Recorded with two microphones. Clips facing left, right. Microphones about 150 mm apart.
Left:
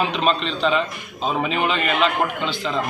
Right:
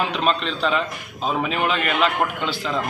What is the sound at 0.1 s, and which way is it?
A man's voice, 5° right (ahead or behind).